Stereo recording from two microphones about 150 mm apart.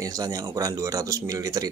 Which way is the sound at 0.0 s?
25° right (ahead or behind).